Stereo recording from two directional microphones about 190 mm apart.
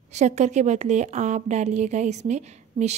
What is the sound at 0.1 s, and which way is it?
A woman's voice, 35° right (ahead or behind).